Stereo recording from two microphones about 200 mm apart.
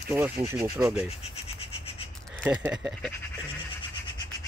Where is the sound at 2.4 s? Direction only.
5° right (ahead or behind).